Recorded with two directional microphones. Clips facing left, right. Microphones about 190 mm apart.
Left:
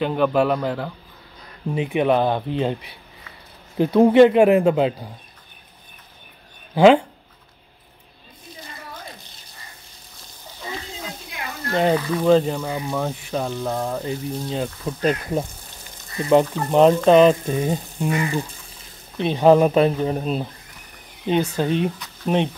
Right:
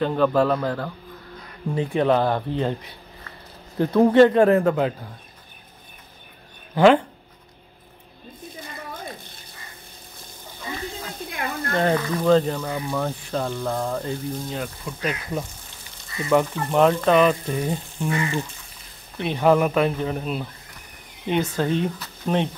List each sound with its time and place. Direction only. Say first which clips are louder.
0.0 s speech: even; 15° left (ahead or behind)
6.7 s speech: left 2 dB; 20° left (ahead or behind)
11.1 s a sound: right 5 dB; 55° right (ahead or behind)
11.7 s speech: left 3 dB; 15° left (ahead or behind)
16.3 s frying: left 4 dB; 20° left (ahead or behind)
21.4 s speech: left 1 dB; 20° left (ahead or behind)